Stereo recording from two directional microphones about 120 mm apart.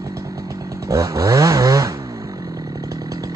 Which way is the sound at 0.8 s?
25° right (ahead or behind).